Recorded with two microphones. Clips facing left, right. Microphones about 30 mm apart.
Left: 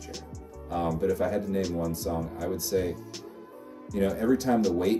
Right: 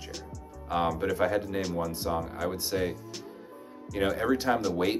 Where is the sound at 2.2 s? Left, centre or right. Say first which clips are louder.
Right 1 dB; centre.